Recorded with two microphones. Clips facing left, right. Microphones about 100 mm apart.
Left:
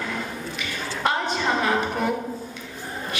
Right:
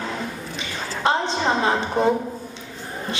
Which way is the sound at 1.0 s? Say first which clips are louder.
Right 3 dB; 25° right (ahead or behind).